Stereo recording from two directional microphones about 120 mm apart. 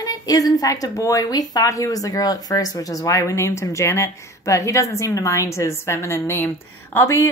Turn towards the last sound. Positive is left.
turn(degrees=25)  # may be behind; listen again after turning